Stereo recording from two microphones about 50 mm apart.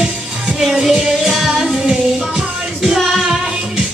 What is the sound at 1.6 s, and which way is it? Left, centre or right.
Child singing, centre.